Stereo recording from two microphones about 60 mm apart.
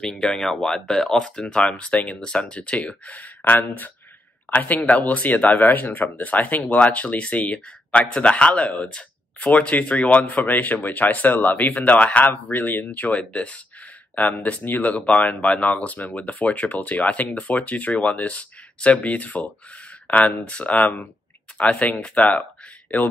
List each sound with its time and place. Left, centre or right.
0.4 s speech: centre; by 22.3 s left